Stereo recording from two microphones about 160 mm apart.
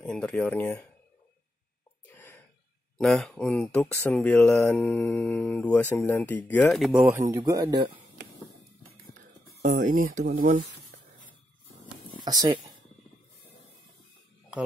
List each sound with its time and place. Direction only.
0.0 s mantra: 5° left (ahead or behind)
2.0 s a sound: 15° left (ahead or behind)
3.0 s speech: 5° left (ahead or behind)
3.9 s mantra: 10° left (ahead or behind)
6.9 s speech: 5° right (ahead or behind)
7.2 s a man's voice: 20° right (ahead or behind)
9.8 s speech: 55° right (ahead or behind)
12.3 s a man's voice: 25° right (ahead or behind)